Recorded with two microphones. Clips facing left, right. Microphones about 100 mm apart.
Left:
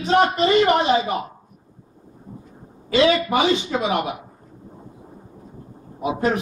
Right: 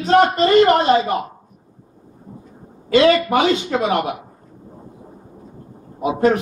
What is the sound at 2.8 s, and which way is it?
Speech, 50° right (ahead or behind).